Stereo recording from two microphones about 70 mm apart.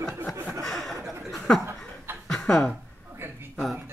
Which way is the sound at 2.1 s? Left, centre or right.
Right.